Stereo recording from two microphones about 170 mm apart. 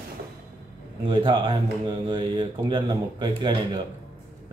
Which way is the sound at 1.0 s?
30° right (ahead or behind).